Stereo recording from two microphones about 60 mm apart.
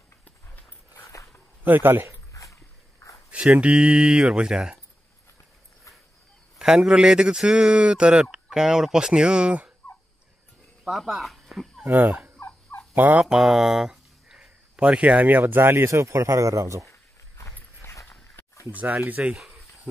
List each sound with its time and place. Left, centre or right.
1.0 s dog: left
1.6 s a man's voice: right
2.1 s dog: left
3.3 s speech: right
6.6 s speech: centre
10.9 s speech: centre
11.8 s speech: right
12.4 s turkey: left
12.9 s fowl: right
13.2 s speech: centre; by 16.8 s right
17.8 s a sound: left
18.8 s speech: right
19.3 s cricket: centre